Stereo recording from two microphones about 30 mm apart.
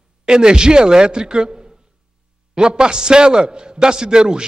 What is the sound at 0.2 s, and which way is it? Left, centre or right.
A man's voice, right.